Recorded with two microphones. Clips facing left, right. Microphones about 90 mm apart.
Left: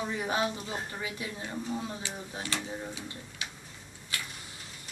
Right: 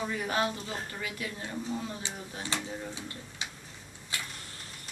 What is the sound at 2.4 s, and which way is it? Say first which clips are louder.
Speech: right 1 dB; 30° right (ahead or behind).